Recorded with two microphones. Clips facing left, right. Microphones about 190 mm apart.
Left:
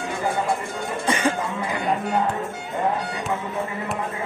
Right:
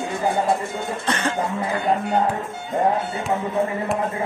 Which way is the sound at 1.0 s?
10° left (ahead or behind).